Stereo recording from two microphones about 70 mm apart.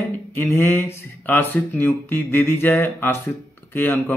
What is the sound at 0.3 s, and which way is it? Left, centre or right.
A man's voice, left.